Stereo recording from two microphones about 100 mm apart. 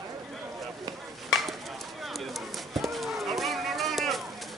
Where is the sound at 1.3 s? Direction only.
Centre (ahead or behind).